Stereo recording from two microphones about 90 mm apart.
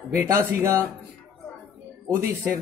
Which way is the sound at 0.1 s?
30° right (ahead or behind).